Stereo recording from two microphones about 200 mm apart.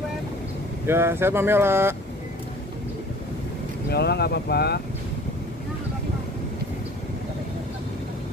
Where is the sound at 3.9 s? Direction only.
55° left (ahead or behind).